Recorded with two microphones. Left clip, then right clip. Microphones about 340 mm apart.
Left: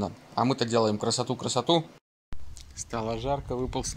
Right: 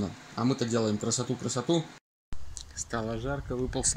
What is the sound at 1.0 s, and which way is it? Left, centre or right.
Speech, centre.